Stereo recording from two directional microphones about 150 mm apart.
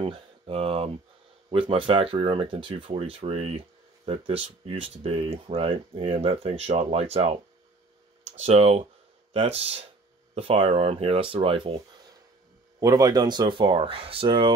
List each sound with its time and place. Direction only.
0.0 s speech: 40° right (ahead or behind)
8.4 s speech: 45° right (ahead or behind)
12.8 s speech: 25° right (ahead or behind)